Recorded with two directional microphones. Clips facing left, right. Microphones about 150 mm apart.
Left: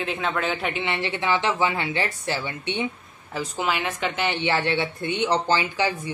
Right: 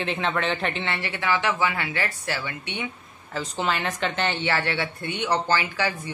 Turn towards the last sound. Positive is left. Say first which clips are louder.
# left 2 dB
turn(degrees=20)  # may be behind; listen again after turning